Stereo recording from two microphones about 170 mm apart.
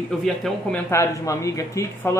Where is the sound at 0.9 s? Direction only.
20° left (ahead or behind).